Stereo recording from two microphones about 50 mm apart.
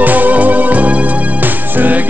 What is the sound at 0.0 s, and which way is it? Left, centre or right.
Music, right.